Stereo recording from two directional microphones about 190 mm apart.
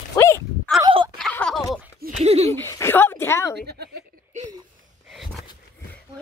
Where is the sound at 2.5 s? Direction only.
15° left (ahead or behind).